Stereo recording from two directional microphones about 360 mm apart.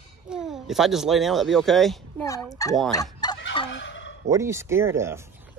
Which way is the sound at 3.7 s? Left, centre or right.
Left.